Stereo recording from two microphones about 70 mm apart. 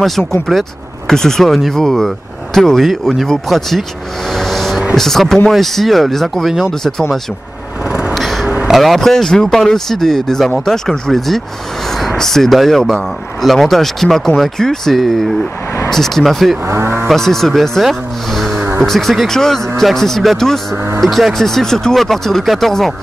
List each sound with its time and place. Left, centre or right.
0.5 s speech: centre
4.3 s vehicle: centre
4.9 s speech: centre
8.1 s a sound: centre
8.6 s speech: centre
16.6 s cattle: right
17.1 s speech: centre
20.7 s cattle: right
21.0 s speech: centre